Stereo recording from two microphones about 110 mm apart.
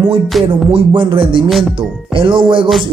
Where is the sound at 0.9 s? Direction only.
50° right (ahead or behind).